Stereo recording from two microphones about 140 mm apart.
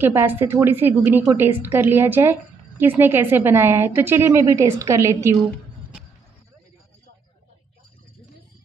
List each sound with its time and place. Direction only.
0.0 s a woman's voice: 15° right (ahead or behind)